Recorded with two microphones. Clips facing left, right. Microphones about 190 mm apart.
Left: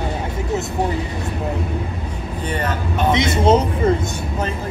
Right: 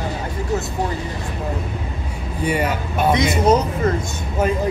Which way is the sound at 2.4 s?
10° right (ahead or behind).